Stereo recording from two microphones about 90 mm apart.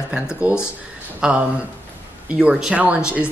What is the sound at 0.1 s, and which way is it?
A woman's voice, 10° right (ahead or behind).